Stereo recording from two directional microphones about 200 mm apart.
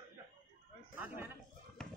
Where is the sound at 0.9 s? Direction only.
10° right (ahead or behind).